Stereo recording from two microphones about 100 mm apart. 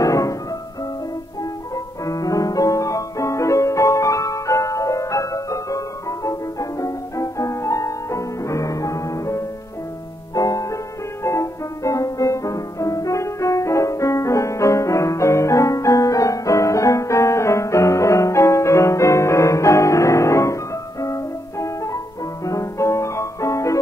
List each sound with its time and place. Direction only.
0.0 s music: 35° left (ahead or behind)
2.0 s music: 35° left (ahead or behind)